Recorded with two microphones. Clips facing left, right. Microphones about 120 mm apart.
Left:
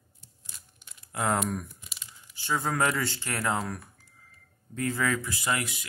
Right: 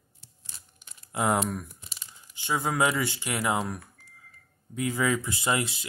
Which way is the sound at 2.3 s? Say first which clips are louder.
Right 1 dB; 15° right (ahead or behind).